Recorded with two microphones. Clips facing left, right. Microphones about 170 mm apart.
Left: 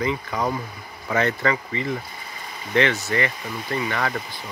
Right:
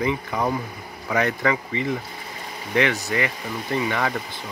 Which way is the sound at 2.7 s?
15° right (ahead or behind).